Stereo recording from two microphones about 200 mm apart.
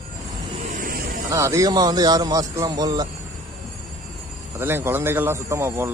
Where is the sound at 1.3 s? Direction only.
15° right (ahead or behind).